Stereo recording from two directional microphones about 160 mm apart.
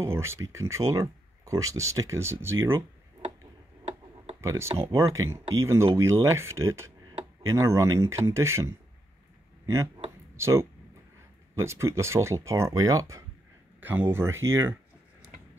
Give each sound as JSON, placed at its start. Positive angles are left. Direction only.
{"t": 0.0, "sound": "speech", "side_deg": -15}
{"t": 4.4, "sound": "speech", "side_deg": -15}
{"t": 10.3, "sound": "speech", "side_deg": -15}